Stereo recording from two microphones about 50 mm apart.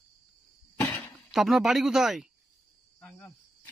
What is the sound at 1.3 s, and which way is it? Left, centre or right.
Speech, centre.